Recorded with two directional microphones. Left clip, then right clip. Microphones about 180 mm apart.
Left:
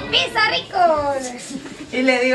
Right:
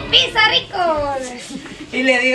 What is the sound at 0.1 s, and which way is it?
Speech, 30° right (ahead or behind).